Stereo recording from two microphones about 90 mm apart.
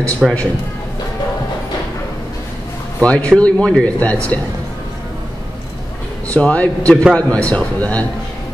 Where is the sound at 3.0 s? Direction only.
15° left (ahead or behind).